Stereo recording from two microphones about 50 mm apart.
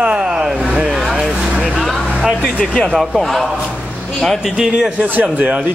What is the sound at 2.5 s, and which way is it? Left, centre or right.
Speech, left.